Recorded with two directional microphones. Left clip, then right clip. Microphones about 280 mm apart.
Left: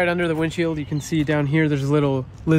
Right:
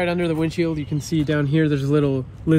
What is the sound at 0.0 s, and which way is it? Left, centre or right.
Speech, centre.